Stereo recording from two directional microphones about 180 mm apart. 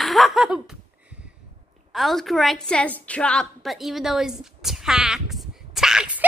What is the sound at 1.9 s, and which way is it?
A woman's voice, centre (ahead or behind).